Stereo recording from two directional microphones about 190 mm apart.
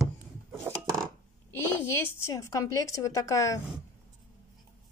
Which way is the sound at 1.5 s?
10° left (ahead or behind).